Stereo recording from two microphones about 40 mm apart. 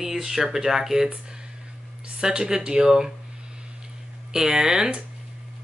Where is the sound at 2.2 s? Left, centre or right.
Centre.